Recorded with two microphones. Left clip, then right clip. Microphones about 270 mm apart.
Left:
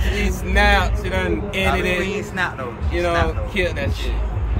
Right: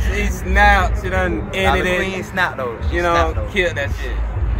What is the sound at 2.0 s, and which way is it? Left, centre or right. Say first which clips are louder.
Speech: right 3 dB; centre.